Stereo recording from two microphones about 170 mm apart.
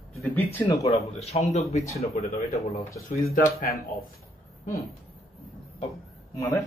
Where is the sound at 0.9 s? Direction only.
40° left (ahead or behind).